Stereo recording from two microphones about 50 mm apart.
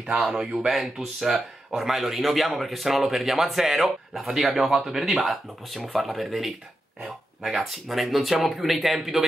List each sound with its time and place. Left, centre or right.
0.3 s speech: right
0.7 s speech: centre
7.6 s speech: centre